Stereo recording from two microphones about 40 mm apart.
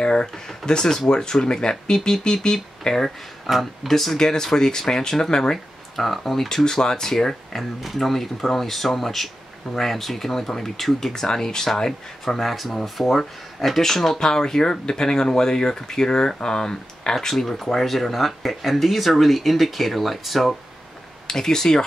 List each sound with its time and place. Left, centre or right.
0.0 s speech: left
0.5 s speech: centre
5.9 s speech: centre
12.4 s speech: centre
21.3 s speech: centre